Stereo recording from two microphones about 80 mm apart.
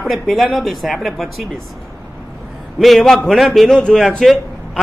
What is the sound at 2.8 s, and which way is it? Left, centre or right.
A man's voice, centre.